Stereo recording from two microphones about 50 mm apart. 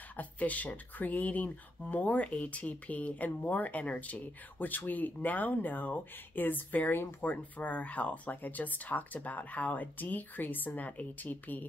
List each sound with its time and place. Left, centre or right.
0.2 s speech: left